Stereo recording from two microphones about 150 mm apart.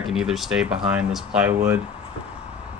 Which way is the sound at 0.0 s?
5° right (ahead or behind).